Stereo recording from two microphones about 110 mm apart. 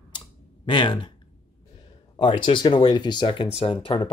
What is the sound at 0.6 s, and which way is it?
Speech, 50° left (ahead or behind).